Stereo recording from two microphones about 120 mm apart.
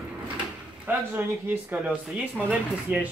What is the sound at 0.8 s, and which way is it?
Speech, 15° right (ahead or behind).